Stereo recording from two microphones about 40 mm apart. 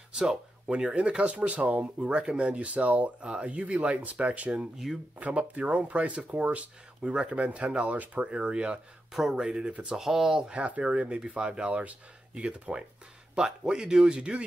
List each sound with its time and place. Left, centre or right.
0.1 s speech: centre
0.7 s speech: right
1.3 s speech: right
4.8 s speech: centre
5.5 s speech: right
9.1 s speech: centre
9.4 s speech: centre
10.4 s speech: right